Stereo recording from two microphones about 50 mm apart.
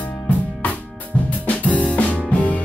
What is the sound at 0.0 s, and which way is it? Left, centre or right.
Drum kit, left.